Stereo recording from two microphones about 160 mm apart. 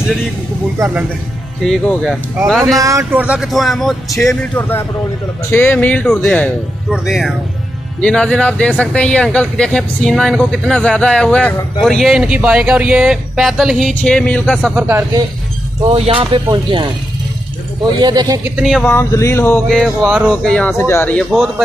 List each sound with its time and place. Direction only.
0.7 s speech: 15° right (ahead or behind)
1.6 s speech: centre (ahead or behind)
2.8 s speech: 20° right (ahead or behind); by 14.7 s 5° left (ahead or behind)
14.8 s speech: 15° right (ahead or behind)
15.8 s speech: 35° right (ahead or behind)
17.9 s a man's voice: 25° right (ahead or behind)
18.6 s speech: centre (ahead or behind)
18.9 s speech: 15° left (ahead or behind)
19.7 s speech: centre (ahead or behind)
20.2 s speech: 5° left (ahead or behind)